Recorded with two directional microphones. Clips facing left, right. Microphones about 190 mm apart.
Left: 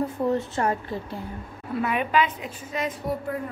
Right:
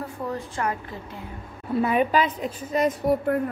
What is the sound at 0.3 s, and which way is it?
Speech, 25° left (ahead or behind).